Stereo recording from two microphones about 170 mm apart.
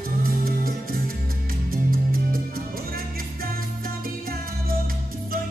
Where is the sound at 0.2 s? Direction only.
60° right (ahead or behind).